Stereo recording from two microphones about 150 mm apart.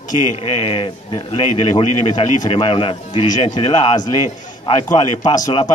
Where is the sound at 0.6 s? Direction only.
40° left (ahead or behind).